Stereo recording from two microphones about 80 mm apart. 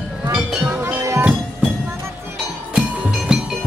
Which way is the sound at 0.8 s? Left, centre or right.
Right.